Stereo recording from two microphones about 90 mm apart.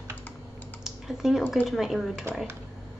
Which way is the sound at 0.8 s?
5° right (ahead or behind).